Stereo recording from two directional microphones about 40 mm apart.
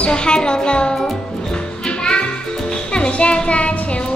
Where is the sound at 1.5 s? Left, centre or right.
Left.